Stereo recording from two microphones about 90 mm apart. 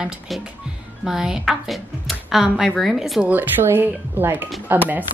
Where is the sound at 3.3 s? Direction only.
20° right (ahead or behind).